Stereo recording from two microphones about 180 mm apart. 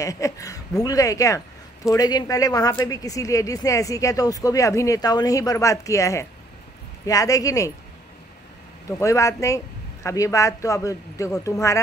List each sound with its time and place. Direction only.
0.0 s speech: 15° left (ahead or behind)
8.8 s speech: 15° left (ahead or behind)